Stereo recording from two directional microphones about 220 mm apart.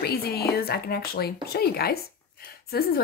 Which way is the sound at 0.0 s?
45° left (ahead or behind).